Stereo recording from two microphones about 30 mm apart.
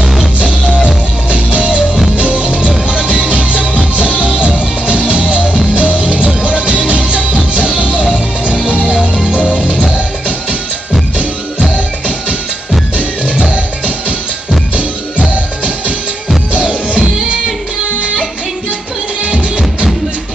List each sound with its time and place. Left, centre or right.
0.0 s music: centre
1.3 s music: right
13.2 s music: right
19.3 s music: right